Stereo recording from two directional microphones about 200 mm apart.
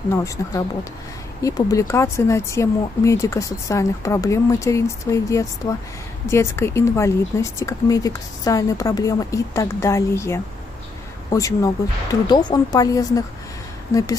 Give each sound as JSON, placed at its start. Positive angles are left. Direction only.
{"t": 0.1, "sound": "speech", "side_deg": 15}